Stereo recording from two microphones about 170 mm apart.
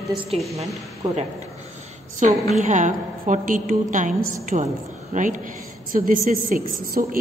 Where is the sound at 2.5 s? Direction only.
45° right (ahead or behind).